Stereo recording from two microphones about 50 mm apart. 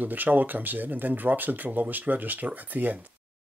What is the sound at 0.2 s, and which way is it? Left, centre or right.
Speech, right.